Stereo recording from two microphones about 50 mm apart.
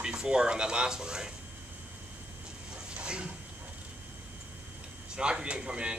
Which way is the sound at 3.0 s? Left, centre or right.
Right.